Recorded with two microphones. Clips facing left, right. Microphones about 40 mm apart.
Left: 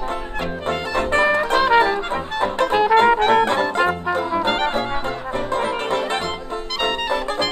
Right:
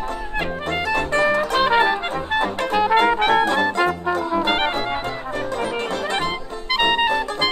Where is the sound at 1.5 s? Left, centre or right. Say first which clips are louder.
Left 2 dB; centre.